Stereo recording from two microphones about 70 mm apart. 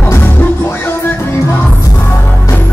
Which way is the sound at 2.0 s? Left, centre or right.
Left.